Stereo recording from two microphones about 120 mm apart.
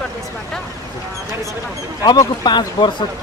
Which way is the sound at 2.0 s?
35° left (ahead or behind).